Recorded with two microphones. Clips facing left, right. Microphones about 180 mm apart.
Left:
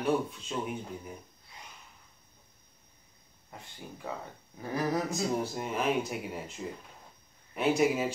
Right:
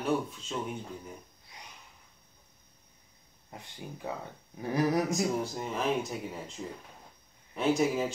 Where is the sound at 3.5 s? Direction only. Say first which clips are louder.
Right 2 dB; 20° right (ahead or behind).